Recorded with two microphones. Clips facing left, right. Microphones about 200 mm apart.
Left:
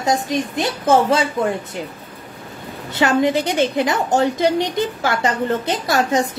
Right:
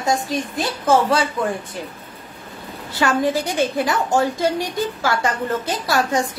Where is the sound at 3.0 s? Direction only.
20° left (ahead or behind).